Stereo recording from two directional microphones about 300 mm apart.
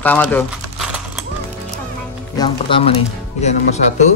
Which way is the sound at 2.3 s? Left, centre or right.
Centre.